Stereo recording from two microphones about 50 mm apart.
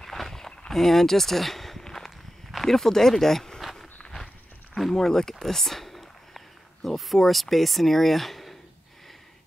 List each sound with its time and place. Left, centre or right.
0.0 s a sound: centre
0.7 s walk: centre
2.5 s speech: centre
4.0 s walk: centre
4.7 s speech: centre